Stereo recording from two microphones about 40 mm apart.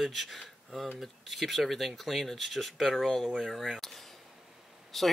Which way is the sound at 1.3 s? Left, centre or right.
Centre.